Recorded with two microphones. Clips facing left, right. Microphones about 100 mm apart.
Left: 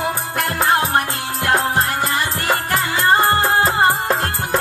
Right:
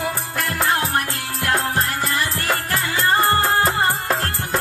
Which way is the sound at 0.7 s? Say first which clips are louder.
Left 4 dB; 25° left (ahead or behind).